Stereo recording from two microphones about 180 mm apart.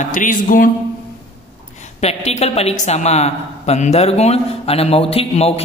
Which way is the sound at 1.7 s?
40° left (ahead or behind).